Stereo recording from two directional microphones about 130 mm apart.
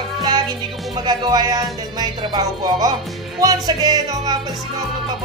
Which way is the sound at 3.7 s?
30° right (ahead or behind).